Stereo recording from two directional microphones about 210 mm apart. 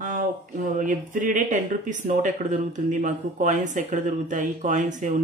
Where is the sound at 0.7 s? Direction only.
40° right (ahead or behind).